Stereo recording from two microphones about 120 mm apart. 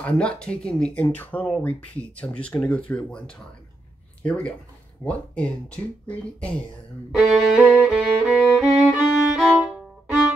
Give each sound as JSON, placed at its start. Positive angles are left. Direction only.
{"t": 0.0, "sound": "speech", "side_deg": 10}
{"t": 7.2, "sound": "music", "side_deg": -5}
{"t": 8.8, "sound": "violin", "side_deg": -5}